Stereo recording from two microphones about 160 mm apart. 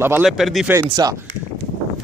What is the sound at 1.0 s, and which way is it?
Speech, 25° right (ahead or behind).